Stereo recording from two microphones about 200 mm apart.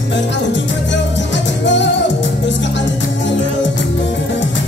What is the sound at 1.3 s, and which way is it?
Music, 65° left (ahead or behind).